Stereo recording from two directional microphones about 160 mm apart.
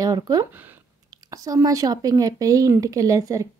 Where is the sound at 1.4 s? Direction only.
20° right (ahead or behind).